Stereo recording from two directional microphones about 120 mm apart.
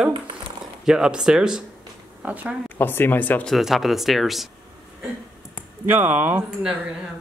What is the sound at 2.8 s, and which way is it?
Speech, 15° left (ahead or behind).